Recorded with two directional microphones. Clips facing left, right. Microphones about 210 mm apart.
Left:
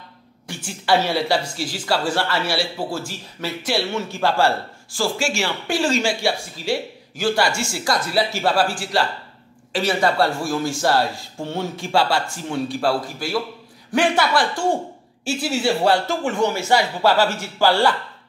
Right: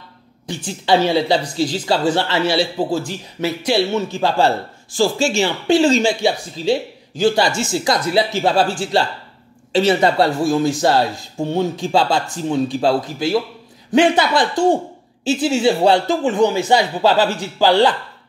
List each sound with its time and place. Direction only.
0.5 s speech: 20° right (ahead or behind)